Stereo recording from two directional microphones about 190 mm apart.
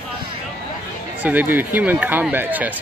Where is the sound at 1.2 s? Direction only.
10° right (ahead or behind).